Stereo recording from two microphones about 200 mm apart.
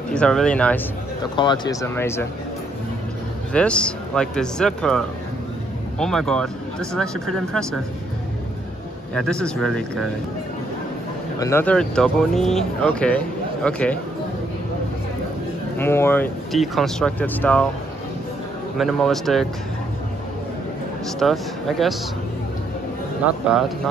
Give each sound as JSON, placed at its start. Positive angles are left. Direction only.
{"t": 0.1, "sound": "speech", "side_deg": 5}
{"t": 1.3, "sound": "speech", "side_deg": 20}
{"t": 3.5, "sound": "speech", "side_deg": 5}
{"t": 9.1, "sound": "speech", "side_deg": 5}
{"t": 11.3, "sound": "speech", "side_deg": 15}
{"t": 15.8, "sound": "speech", "side_deg": 10}
{"t": 16.5, "sound": "speech", "side_deg": 0}
{"t": 18.8, "sound": "speech", "side_deg": 0}
{"t": 21.2, "sound": "speech", "side_deg": 0}
{"t": 23.2, "sound": "speech", "side_deg": -5}